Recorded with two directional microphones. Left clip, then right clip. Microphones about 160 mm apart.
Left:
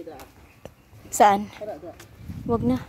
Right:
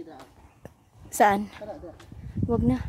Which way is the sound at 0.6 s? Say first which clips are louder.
Left 5 dB; 20° right (ahead or behind).